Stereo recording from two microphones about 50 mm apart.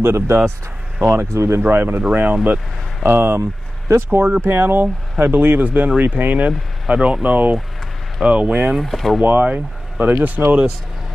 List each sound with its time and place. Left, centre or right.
0.0 s speech: right
0.9 s speech: right
1.3 s speech: right
1.7 s speech: right
2.0 s speech: right
3.1 s speech: right
4.2 s speech: right
8.7 s speech: centre
9.4 s speech: right